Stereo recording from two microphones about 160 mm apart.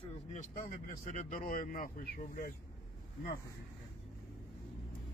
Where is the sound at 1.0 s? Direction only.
45° left (ahead or behind); by 2.5 s 65° left (ahead or behind).